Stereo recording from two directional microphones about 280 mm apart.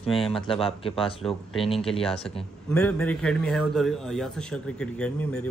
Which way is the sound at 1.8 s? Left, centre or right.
Centre.